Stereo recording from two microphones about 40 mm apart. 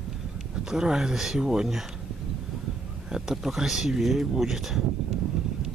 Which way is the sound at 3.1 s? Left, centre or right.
Centre.